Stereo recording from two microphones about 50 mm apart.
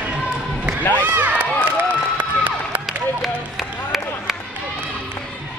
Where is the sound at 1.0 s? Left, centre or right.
Right.